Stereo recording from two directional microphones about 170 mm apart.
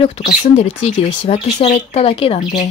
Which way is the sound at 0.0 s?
40° left (ahead or behind).